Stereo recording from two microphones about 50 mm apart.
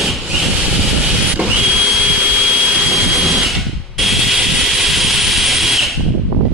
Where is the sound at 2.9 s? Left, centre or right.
Centre.